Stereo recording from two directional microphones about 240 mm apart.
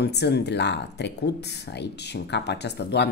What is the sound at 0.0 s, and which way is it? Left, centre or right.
Speech, left.